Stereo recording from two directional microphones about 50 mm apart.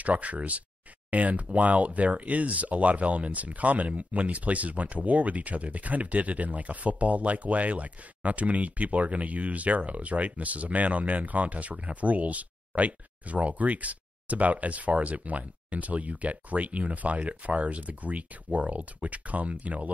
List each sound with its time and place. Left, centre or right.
0.0 s speech: right